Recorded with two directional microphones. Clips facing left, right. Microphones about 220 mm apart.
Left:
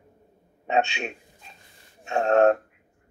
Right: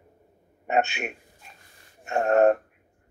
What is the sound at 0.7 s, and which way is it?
Speech, 25° left (ahead or behind).